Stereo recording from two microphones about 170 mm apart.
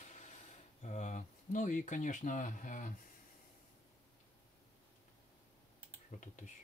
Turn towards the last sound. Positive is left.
turn(degrees=45)  # may be behind; listen again after turning